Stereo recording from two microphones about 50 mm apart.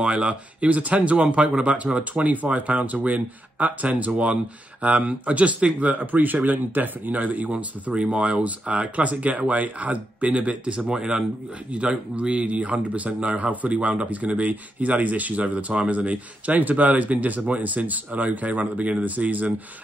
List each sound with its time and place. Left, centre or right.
0.0 s speech: right